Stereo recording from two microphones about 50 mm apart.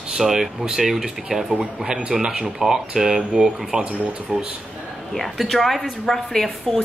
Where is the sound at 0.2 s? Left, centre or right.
Centre.